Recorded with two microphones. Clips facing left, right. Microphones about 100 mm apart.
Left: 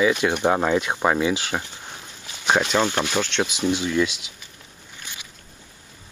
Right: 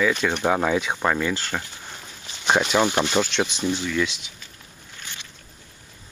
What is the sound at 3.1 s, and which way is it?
Speech, 5° right (ahead or behind).